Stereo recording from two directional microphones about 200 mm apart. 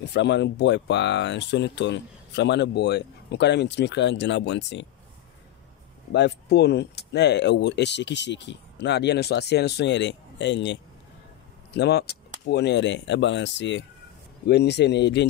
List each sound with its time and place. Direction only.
0.0 s speech: 60° left (ahead or behind)
6.1 s speech: 55° left (ahead or behind)